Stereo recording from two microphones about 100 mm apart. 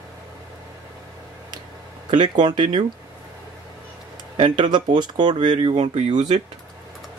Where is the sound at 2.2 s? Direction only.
50° right (ahead or behind).